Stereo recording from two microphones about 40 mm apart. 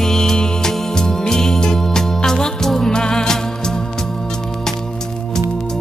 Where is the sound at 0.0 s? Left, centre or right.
Centre.